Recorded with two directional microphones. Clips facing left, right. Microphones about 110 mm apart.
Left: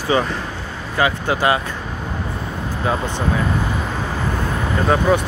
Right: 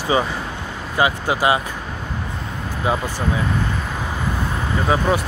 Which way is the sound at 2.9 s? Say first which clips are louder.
Even; 15° right (ahead or behind).